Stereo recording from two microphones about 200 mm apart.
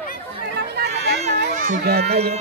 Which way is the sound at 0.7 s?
55° right (ahead or behind).